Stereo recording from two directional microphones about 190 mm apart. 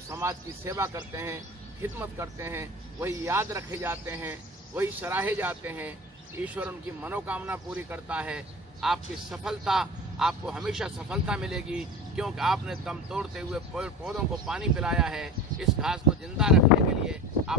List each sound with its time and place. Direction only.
0.1 s a man's voice: 15° right (ahead or behind)